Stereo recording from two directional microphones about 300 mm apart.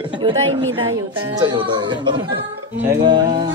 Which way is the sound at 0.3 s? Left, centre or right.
Right.